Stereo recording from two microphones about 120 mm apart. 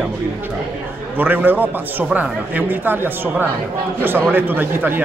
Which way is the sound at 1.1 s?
15° right (ahead or behind).